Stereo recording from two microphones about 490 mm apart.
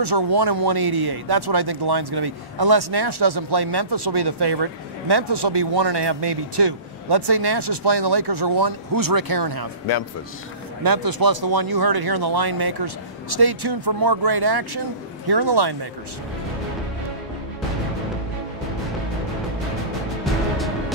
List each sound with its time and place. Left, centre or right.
0.0 s speech: right
10.8 s speech: right